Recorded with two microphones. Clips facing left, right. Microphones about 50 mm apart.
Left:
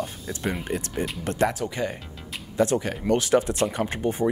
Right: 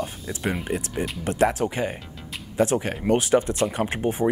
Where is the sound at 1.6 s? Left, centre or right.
Right.